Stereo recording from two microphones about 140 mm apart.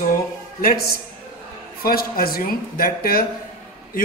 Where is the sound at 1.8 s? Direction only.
90° left.